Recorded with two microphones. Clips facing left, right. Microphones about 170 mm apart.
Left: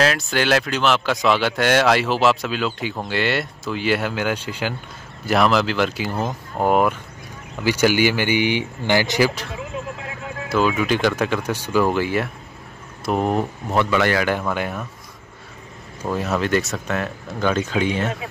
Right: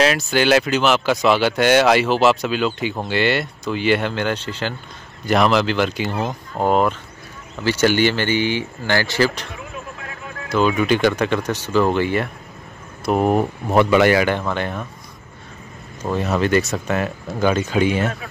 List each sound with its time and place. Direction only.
0.0 s speech: centre (ahead or behind); by 9.3 s 15° left (ahead or behind)
10.5 s speech: 5° left (ahead or behind); by 14.2 s 15° right (ahead or behind)
14.2 s speech: 5° left (ahead or behind)
16.0 s speech: 5° left (ahead or behind)